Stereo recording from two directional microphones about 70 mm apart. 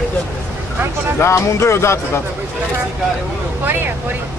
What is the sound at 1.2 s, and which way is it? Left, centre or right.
Speech, left.